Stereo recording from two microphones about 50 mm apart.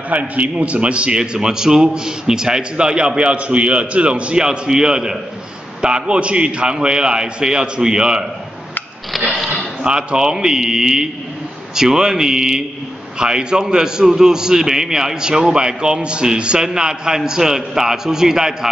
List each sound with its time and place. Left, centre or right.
0.1 s a man's voice: right
9.1 s a sound: centre
9.8 s a man's voice: centre